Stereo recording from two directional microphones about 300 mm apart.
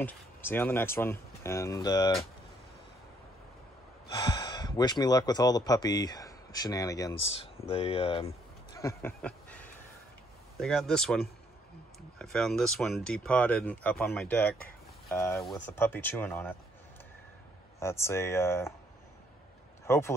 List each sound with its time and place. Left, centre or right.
0.0 s speech: centre
4.1 s speech: centre
8.7 s a sound: centre
10.6 s speech: centre
12.2 s speech: centre
17.7 s speech: centre
19.9 s speech: centre